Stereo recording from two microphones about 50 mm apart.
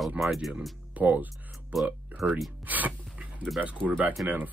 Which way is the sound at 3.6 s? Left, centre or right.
Right.